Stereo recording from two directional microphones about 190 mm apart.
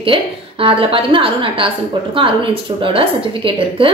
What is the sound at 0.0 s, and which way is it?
A woman's voice, 30° right (ahead or behind).